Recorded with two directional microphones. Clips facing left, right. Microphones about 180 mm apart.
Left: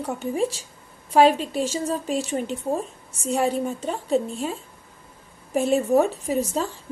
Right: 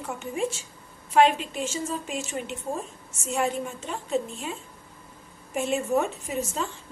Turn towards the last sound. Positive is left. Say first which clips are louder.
# left 6 dB
turn(degrees=35)  # may be behind; listen again after turning